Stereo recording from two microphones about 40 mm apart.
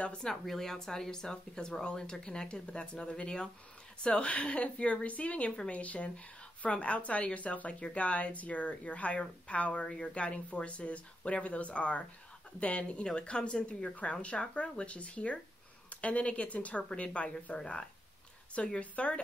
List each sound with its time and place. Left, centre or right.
0.5 s speech: centre; by 17.6 s left
17.6 s speech: left
18.8 s speech: left